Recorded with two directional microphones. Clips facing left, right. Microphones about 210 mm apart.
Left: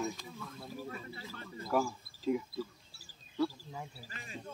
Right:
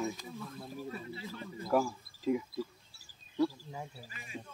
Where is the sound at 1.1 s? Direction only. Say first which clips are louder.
Right 3 dB; 15° right (ahead or behind).